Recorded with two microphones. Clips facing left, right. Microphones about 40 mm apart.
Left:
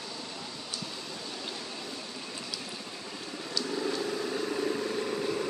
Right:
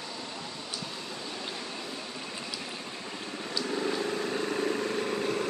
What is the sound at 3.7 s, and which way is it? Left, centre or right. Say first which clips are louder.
Vehicle: right 2 dB; right.